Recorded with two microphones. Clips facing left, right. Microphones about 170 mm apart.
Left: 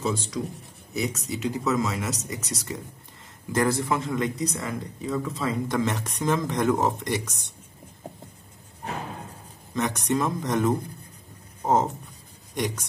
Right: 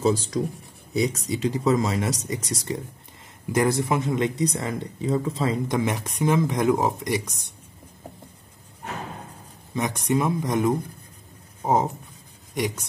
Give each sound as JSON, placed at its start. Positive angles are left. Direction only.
{"t": 0.0, "sound": "speech", "side_deg": -35}
{"t": 3.5, "sound": "speech", "side_deg": -15}
{"t": 5.8, "sound": "speech", "side_deg": -15}
{"t": 9.8, "sound": "speech", "side_deg": -10}